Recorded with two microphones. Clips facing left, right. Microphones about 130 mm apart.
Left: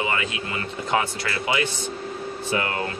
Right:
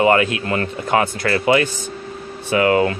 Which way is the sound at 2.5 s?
90° right.